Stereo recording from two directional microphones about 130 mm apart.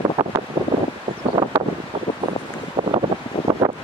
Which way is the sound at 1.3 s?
40° right (ahead or behind).